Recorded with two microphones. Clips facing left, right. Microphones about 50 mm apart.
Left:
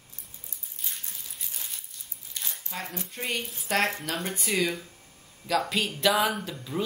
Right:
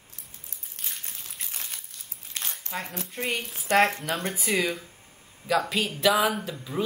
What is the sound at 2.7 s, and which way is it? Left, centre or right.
Speech, centre.